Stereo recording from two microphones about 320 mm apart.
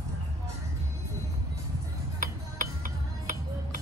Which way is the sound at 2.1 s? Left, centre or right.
Right.